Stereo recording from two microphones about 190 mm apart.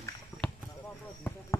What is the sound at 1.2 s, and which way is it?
Speech, 10° left (ahead or behind).